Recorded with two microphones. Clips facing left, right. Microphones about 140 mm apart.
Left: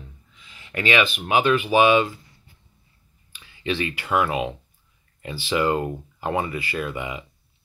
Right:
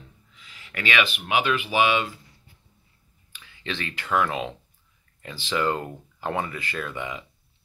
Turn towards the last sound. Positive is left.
turn(degrees=10)  # may be behind; listen again after turning